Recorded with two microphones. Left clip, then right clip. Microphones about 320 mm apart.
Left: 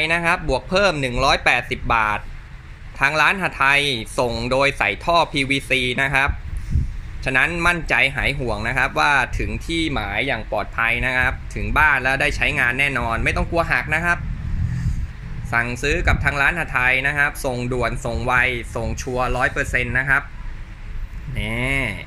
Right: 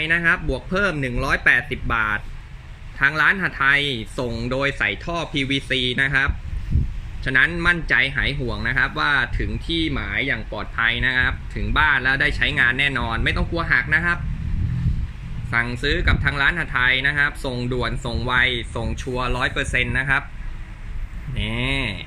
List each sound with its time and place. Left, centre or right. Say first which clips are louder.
0.0 s speech: even; centre
15.8 s speech: left 1 dB; centre
21.4 s speech: left 2 dB; centre